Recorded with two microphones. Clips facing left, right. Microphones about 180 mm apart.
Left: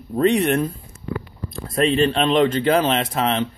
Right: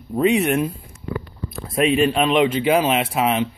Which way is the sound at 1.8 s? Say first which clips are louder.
Right 1 dB; 10° right (ahead or behind).